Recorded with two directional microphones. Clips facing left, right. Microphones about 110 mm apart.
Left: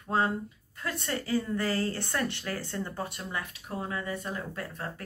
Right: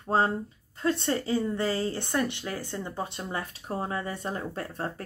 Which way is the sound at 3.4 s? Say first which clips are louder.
Right 4 dB; 35° right (ahead or behind).